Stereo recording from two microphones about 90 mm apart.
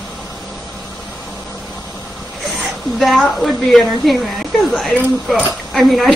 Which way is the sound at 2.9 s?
Centre (ahead or behind).